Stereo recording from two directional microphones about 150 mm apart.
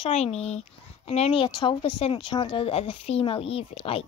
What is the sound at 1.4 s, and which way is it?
A woman's voice, 30° left (ahead or behind).